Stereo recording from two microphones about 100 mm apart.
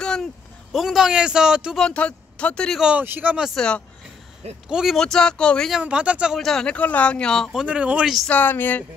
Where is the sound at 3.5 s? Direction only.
10° left (ahead or behind).